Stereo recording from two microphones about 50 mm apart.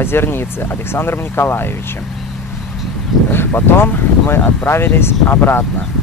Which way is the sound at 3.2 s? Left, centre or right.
Left.